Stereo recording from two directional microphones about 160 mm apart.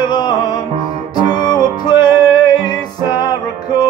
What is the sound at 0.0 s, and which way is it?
Music, 25° left (ahead or behind).